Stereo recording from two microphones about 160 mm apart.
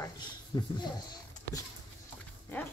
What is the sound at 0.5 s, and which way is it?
Speech, 30° left (ahead or behind).